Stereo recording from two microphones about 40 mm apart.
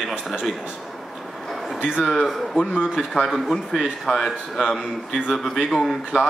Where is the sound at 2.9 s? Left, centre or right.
Centre.